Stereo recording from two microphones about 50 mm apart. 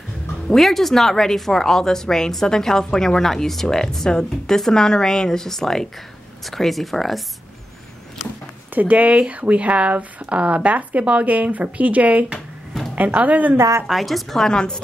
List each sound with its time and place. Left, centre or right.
0.5 s speech: centre
8.7 s speech: right
13.6 s a woman's voice: right
13.8 s speech: centre